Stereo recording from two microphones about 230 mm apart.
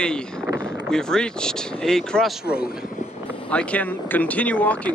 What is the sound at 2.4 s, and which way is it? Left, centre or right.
Speech, left.